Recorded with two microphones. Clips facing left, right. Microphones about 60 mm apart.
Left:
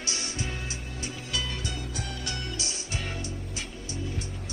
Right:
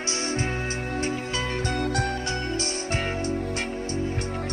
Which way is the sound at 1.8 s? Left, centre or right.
Right.